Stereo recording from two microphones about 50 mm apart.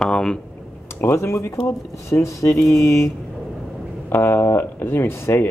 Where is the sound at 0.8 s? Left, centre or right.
Left.